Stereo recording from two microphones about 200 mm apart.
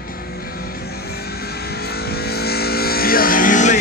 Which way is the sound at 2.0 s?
50° left (ahead or behind).